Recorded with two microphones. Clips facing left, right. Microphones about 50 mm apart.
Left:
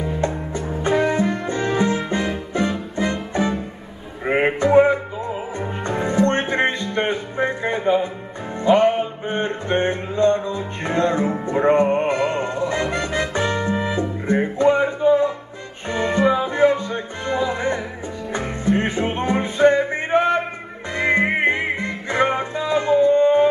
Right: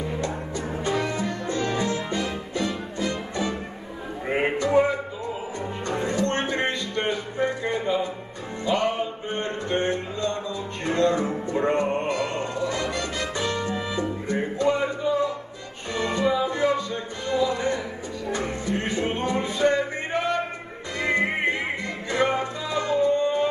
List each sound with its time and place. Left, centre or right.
0.0 s music: left